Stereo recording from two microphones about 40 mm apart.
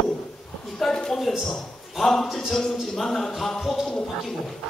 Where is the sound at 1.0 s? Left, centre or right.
Centre.